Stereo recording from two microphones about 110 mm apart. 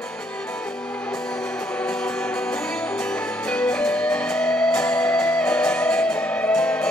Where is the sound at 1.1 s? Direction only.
5° left (ahead or behind).